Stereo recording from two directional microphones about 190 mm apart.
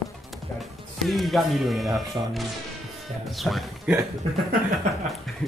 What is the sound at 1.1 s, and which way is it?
Speech, centre (ahead or behind).